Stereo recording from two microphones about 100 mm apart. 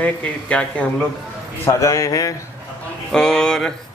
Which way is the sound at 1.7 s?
30° left (ahead or behind).